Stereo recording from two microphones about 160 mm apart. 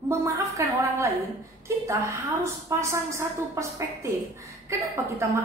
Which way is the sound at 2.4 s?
15° right (ahead or behind).